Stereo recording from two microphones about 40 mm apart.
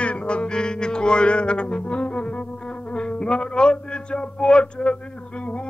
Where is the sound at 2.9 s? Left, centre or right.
Left.